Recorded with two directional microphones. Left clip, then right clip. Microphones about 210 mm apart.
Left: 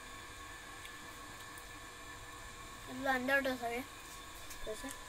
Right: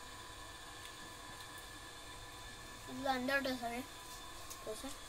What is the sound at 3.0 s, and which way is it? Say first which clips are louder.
Speech: left 3 dB; centre (ahead or behind).